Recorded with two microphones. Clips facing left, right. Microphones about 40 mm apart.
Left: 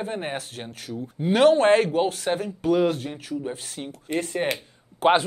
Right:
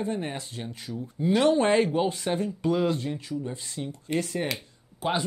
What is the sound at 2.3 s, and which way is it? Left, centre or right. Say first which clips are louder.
Speech: left 3 dB; left.